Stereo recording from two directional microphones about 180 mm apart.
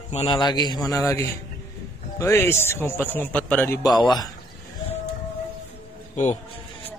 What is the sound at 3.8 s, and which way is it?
Speech, 25° left (ahead or behind).